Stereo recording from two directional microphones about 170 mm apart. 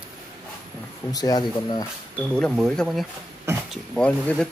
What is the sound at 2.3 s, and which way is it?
Speech, centre (ahead or behind).